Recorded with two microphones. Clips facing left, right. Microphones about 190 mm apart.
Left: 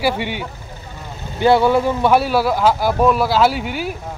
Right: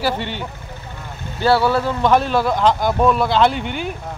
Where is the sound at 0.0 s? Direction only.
10° left (ahead or behind).